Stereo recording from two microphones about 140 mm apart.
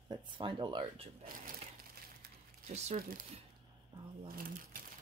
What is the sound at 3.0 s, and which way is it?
Speech, 90° right.